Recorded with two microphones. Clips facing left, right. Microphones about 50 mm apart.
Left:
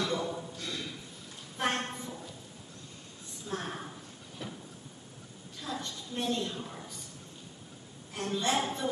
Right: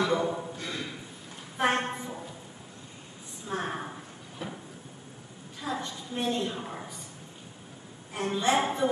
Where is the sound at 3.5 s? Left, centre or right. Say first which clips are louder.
Right 5 dB; right.